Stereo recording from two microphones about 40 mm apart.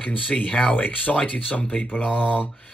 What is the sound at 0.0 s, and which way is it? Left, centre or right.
Speech, left.